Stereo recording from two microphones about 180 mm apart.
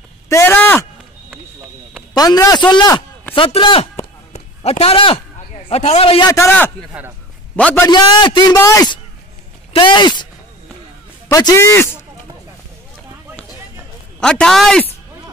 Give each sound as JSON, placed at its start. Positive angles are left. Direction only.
{"t": 0.3, "sound": "a sound", "side_deg": 15}
{"t": 2.1, "sound": "a man's voice", "side_deg": 20}
{"t": 6.3, "sound": "a man's voice", "side_deg": 15}
{"t": 6.8, "sound": "speech", "side_deg": -10}
{"t": 7.5, "sound": "a man's voice", "side_deg": 5}
{"t": 7.9, "sound": "a man's voice", "side_deg": 25}
{"t": 11.2, "sound": "a man's voice", "side_deg": 15}
{"t": 14.2, "sound": "speech", "side_deg": 5}